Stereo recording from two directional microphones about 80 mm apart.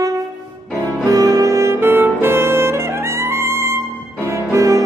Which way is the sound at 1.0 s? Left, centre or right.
Right.